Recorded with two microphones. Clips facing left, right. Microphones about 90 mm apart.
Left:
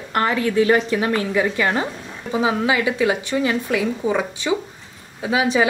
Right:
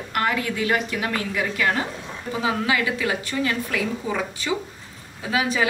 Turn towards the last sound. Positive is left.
turn(degrees=25)  # may be behind; listen again after turning